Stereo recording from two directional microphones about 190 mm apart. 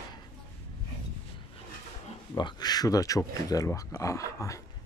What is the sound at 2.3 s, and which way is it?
Speech, 20° left (ahead or behind).